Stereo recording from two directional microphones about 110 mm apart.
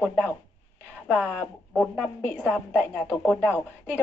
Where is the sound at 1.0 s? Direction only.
10° left (ahead or behind).